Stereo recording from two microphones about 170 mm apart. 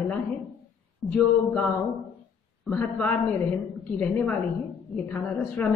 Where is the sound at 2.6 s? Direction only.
5° left (ahead or behind).